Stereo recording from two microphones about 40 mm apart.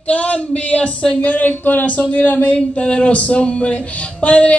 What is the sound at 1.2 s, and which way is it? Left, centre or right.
Speech, left.